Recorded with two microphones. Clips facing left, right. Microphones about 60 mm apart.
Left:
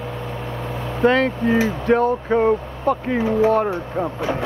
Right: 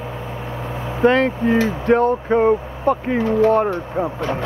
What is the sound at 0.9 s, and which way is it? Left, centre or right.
Speech, centre.